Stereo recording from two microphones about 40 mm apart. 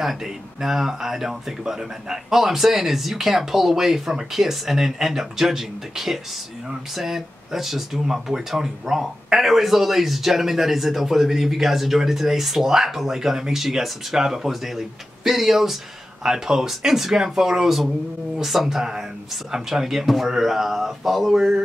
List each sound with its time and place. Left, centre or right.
0.0 s speech: centre
21.3 s speech: centre